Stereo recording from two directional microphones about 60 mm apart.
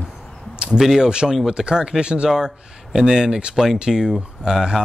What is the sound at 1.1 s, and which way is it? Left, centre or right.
Speech, centre.